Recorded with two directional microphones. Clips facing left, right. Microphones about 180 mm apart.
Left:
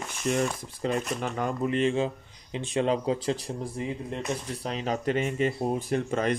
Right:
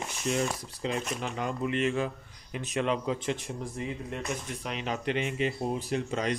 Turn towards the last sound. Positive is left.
turn(degrees=50)  # may be behind; listen again after turning